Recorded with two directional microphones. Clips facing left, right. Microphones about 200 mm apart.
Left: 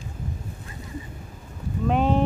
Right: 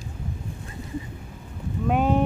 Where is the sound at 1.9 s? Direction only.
10° right (ahead or behind).